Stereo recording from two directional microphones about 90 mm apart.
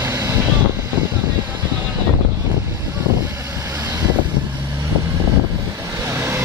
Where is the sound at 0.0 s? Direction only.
30° right (ahead or behind).